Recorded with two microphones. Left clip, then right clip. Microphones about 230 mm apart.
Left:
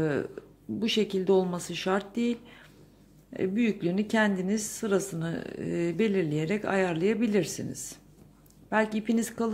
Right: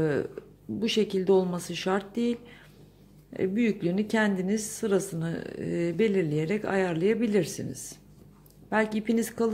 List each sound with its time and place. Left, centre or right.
0.0 s a woman's voice: centre